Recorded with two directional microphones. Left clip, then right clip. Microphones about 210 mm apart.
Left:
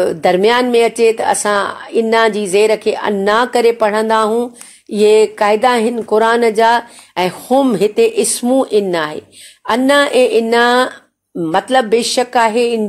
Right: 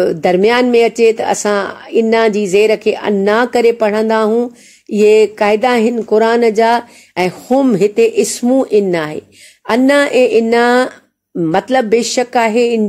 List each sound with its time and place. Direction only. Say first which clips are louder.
0.0 s speech: even; 35° right (ahead or behind)